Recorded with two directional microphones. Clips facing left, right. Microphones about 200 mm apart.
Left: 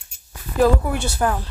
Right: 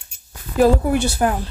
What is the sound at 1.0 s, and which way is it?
Speech, 15° right (ahead or behind).